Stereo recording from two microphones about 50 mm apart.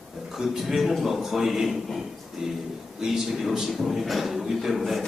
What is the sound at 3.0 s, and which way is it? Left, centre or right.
A man's voice, centre.